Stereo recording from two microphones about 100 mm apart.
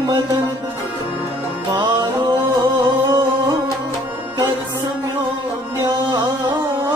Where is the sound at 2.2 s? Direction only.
45° right (ahead or behind).